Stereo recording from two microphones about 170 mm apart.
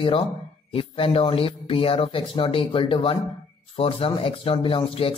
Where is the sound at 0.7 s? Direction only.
35° left (ahead or behind).